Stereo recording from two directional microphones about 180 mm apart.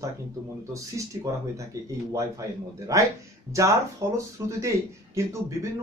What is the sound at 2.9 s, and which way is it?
Speech, 20° right (ahead or behind).